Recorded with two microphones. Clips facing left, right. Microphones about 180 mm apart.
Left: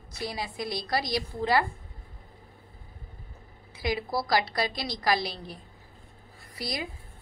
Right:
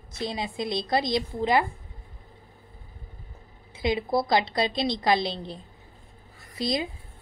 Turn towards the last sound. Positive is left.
turn(degrees=-25)  # may be behind; listen again after turning